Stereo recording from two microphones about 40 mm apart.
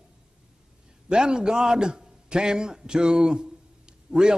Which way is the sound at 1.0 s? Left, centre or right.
Right.